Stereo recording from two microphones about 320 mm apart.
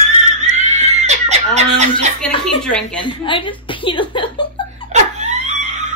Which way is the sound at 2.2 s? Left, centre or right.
Centre.